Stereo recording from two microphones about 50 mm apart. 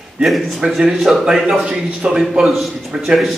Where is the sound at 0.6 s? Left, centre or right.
Centre.